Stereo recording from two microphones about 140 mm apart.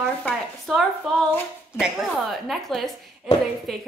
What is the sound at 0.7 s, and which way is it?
A woman's voice, 5° left (ahead or behind).